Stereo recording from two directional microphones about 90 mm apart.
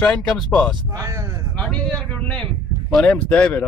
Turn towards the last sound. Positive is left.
turn(degrees=15)  # may be behind; listen again after turning